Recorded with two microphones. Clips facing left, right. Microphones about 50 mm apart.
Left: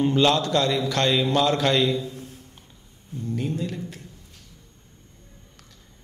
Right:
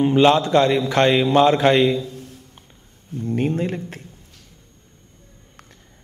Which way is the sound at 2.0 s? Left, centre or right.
Left.